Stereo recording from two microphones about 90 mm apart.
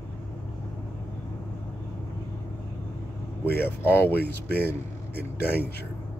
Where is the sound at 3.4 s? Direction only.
25° left (ahead or behind).